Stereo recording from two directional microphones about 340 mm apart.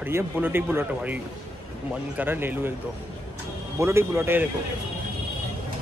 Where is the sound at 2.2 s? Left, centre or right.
Centre.